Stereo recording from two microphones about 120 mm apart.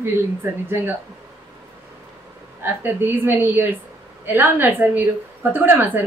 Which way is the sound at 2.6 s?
15° right (ahead or behind).